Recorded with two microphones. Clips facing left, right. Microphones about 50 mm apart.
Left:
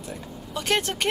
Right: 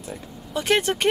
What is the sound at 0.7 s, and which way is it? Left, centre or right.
Speech, centre.